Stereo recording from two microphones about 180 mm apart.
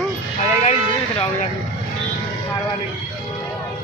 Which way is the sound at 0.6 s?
40° left (ahead or behind).